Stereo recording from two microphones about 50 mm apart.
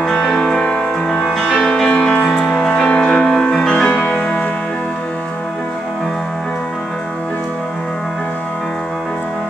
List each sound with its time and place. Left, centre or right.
0.0 s music: centre